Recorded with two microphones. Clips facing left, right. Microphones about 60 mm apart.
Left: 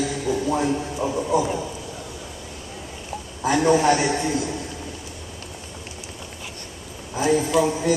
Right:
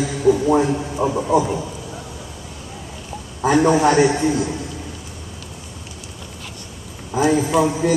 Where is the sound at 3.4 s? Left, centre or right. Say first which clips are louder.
Right 3 dB; right.